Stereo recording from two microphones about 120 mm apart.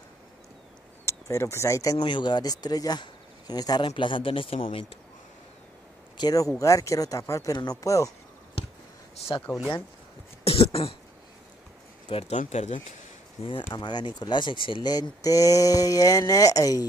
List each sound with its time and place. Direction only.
1.0 s speech: 25° left (ahead or behind)
2.0 s speech: 40° left (ahead or behind)
6.1 s a man's voice: 30° left (ahead or behind)
10.4 s throat clearing: 55° left (ahead or behind)
12.1 s speech: 65° left (ahead or behind)
13.4 s speech: 45° left (ahead or behind)
13.7 s speech: 35° left (ahead or behind)